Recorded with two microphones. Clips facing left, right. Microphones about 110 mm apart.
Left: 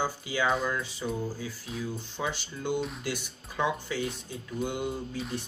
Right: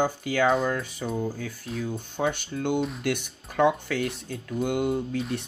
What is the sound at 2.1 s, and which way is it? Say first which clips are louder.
Speech: right 6 dB; 55° right (ahead or behind).